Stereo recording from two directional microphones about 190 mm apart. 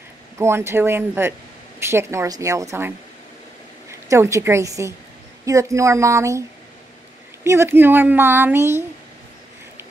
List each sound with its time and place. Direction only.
0.4 s a woman's voice: 15° right (ahead or behind)
4.1 s a woman's voice: 15° right (ahead or behind)
7.4 s a woman's voice: 15° right (ahead or behind)